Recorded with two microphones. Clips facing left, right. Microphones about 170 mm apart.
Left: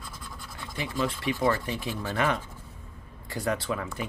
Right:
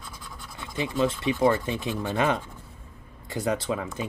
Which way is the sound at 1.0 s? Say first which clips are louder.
Right 4 dB; 20° right (ahead or behind).